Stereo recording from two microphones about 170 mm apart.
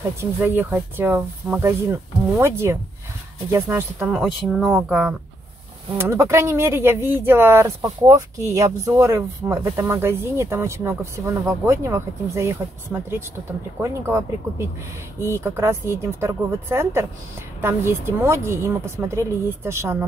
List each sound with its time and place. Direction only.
0.2 s speech: 10° right (ahead or behind)